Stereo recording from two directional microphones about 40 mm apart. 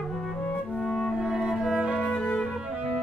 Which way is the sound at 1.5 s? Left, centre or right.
Centre.